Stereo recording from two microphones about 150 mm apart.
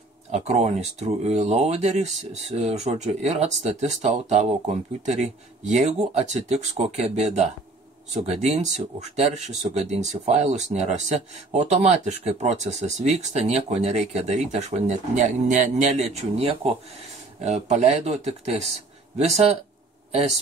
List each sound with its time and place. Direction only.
0.3 s speech: 50° right (ahead or behind)